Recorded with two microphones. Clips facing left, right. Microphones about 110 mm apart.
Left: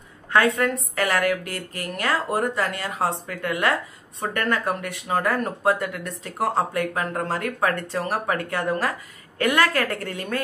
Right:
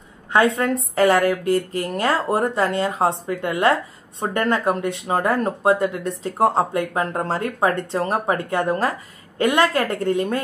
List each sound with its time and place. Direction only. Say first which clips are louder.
0.3 s a woman's voice: right 2 dB; 25° right (ahead or behind)